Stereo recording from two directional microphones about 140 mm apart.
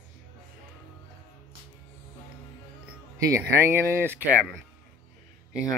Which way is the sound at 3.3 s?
20° right (ahead or behind).